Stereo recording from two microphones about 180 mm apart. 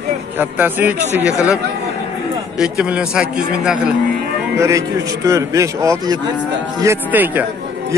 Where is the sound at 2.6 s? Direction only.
5° right (ahead or behind).